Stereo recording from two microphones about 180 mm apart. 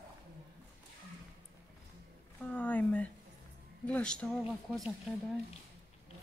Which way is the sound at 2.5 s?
10° left (ahead or behind).